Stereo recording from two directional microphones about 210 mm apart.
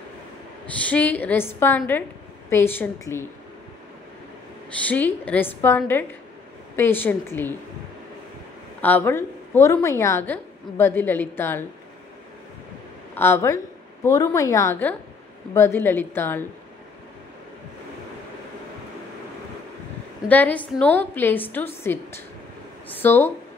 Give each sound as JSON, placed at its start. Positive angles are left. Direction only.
{"t": 0.8, "sound": "a woman's voice", "side_deg": 5}
{"t": 4.8, "sound": "a woman's voice", "side_deg": 5}
{"t": 8.8, "sound": "a woman's voice", "side_deg": 10}
{"t": 13.1, "sound": "a woman's voice", "side_deg": 10}
{"t": 20.2, "sound": "a woman's voice", "side_deg": 5}